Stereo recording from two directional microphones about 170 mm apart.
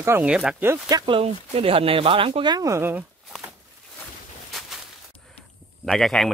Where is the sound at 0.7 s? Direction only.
20° right (ahead or behind).